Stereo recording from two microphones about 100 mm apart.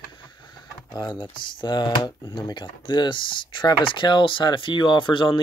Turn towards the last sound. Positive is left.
turn(degrees=55)  # may be behind; listen again after turning